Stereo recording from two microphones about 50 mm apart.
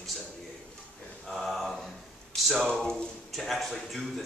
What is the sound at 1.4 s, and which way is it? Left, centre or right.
A man's voice, centre.